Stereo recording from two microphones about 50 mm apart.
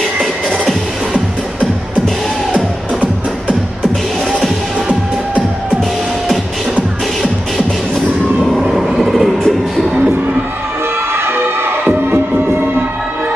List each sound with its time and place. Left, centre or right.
8.5 s vehicle: centre
9.0 s a sound: centre
11.1 s music: right